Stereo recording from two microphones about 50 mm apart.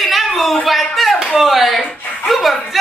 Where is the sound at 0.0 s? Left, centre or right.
Centre.